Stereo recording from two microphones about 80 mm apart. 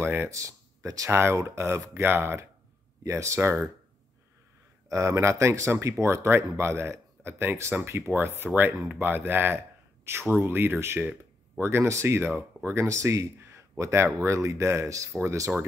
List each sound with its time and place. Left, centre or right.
0.0 s a sound: right
0.3 s speech: right
4.8 s speech: right